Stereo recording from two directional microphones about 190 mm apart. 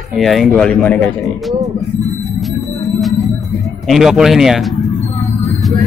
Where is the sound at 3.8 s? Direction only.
Centre (ahead or behind).